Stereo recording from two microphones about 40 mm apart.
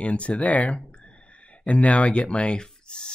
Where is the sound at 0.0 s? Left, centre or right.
Left.